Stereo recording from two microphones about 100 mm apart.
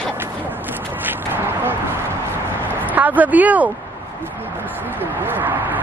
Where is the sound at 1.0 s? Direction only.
20° right (ahead or behind).